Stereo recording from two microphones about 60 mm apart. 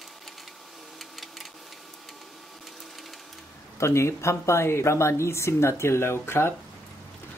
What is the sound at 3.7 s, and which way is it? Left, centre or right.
Speech, left.